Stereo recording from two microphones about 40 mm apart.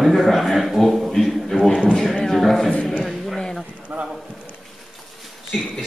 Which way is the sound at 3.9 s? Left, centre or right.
Right.